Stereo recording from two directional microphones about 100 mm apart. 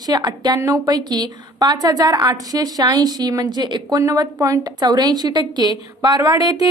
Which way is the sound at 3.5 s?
50° right (ahead or behind).